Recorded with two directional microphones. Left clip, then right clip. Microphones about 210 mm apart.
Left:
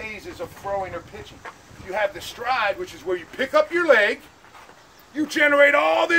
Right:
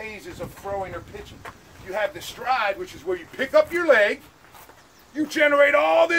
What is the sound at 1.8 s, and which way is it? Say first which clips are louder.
Speech: left 2 dB; 5° left (ahead or behind).